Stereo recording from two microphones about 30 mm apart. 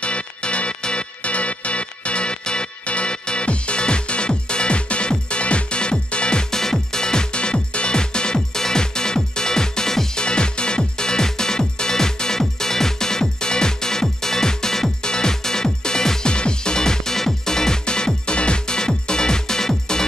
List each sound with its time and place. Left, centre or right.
0.0 s music: left
6.5 s music: centre
10.1 s music: left
16.3 s music: left